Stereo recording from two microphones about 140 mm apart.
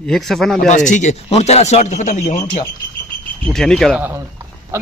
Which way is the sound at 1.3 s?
50° left (ahead or behind).